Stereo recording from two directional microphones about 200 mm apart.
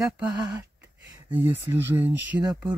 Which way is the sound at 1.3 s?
10° right (ahead or behind).